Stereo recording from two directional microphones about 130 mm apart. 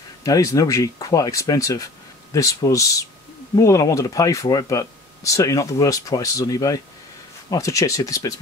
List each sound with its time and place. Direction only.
0.2 s speech: 25° left (ahead or behind)